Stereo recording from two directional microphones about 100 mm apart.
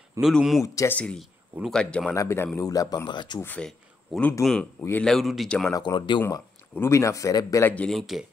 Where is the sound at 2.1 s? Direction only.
25° left (ahead or behind).